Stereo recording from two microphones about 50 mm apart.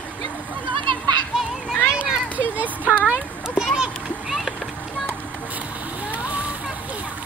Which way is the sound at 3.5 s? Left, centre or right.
Centre.